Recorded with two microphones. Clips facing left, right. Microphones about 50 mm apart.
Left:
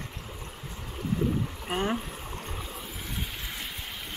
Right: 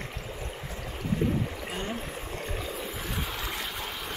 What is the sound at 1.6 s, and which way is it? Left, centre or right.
Rowboat, left.